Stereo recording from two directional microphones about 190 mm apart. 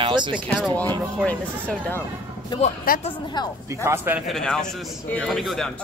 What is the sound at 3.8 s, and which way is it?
Speech, 15° right (ahead or behind).